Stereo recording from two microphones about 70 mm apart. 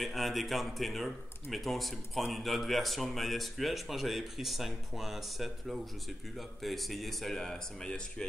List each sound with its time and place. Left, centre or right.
0.0 s speech: centre